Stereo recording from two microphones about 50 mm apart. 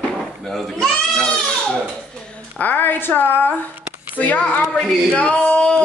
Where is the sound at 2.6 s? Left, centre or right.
Left.